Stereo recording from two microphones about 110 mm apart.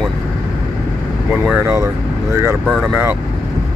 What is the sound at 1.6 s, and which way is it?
Speech, 25° right (ahead or behind).